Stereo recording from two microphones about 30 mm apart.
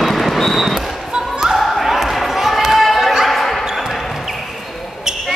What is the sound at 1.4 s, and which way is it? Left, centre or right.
Basketball bounce, centre.